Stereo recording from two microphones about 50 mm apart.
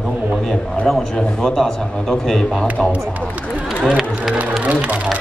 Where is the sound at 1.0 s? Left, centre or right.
Centre.